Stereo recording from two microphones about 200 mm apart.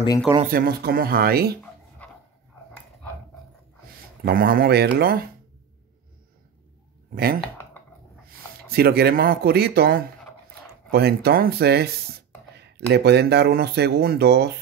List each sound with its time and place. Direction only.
0.4 s speech: 45° right (ahead or behind)
2.0 s dog: 5° left (ahead or behind)
3.8 s speech: 50° right (ahead or behind)
7.3 s speech: 10° left (ahead or behind)
8.3 s speech: 50° right (ahead or behind)